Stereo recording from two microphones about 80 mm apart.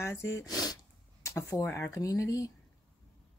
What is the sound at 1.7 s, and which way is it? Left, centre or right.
Speech, left.